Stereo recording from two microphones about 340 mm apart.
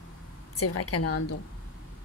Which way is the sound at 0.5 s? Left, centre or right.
Left.